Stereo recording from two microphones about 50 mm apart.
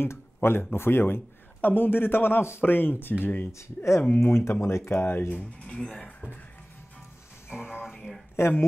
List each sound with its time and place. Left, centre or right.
0.0 s speech: left
1.6 s speech: left
3.5 s speech: left
4.2 s speech: left
5.3 s speech: left
7.4 s speech: centre
8.4 s speech: left